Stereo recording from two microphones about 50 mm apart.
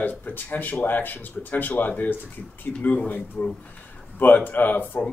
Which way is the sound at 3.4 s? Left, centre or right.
Left.